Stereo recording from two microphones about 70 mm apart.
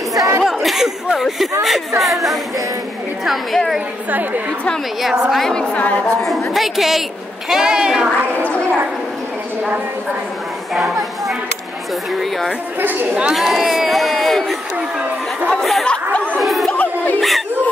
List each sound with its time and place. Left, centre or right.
0.1 s chatter: right
0.4 s a woman's voice: centre
3.3 s a woman's voice: centre
4.1 s a woman's voice: right
5.0 s a woman's voice: centre
5.4 s a woman's voice: centre
6.2 s a woman's voice: centre
12.2 s a woman's voice: centre
15.8 s speech: centre
16.3 s speech: centre
16.7 s a sound: left